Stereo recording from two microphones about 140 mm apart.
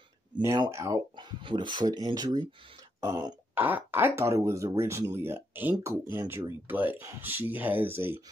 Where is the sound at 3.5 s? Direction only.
15° right (ahead or behind).